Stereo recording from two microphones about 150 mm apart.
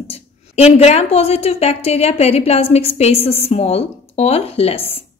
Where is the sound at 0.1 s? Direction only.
45° left (ahead or behind).